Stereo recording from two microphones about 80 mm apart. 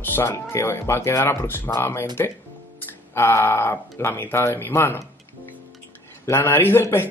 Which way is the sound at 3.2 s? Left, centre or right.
Left.